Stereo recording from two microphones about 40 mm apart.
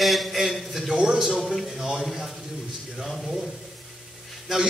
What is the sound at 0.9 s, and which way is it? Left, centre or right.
Speech, centre.